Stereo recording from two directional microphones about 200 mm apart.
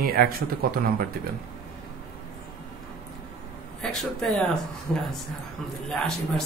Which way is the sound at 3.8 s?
Centre (ahead or behind).